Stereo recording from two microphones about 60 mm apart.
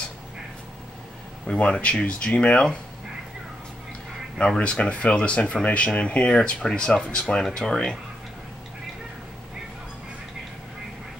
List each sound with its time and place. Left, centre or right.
1.5 s speech: centre
4.4 s speech: centre